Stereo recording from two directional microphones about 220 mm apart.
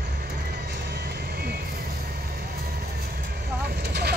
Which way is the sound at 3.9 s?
50° right (ahead or behind).